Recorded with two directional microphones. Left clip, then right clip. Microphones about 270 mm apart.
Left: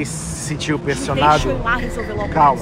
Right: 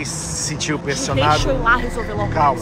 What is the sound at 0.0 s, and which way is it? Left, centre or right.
A man's voice, centre.